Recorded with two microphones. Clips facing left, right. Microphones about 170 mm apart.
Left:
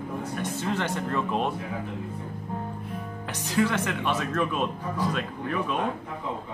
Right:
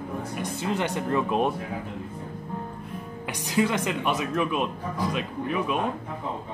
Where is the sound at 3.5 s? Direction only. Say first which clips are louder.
Right 1 dB; 15° right (ahead or behind).